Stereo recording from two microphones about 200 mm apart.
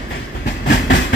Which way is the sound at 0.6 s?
60° left (ahead or behind).